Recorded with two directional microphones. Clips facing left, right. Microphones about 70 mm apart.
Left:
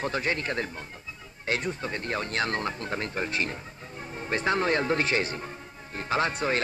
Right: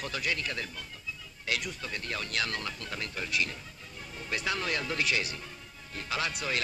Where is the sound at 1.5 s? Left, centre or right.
Left.